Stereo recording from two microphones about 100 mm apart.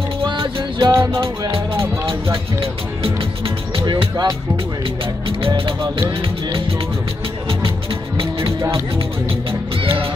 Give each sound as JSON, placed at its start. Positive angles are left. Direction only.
{"t": 0.4, "sound": "music", "side_deg": -45}
{"t": 2.6, "sound": "speech", "side_deg": -65}
{"t": 3.8, "sound": "speech", "side_deg": -45}
{"t": 8.2, "sound": "music", "side_deg": -60}